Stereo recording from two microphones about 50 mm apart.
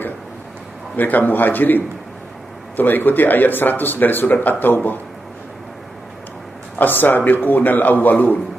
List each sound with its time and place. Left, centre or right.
0.9 s speech: left
6.8 s speech: left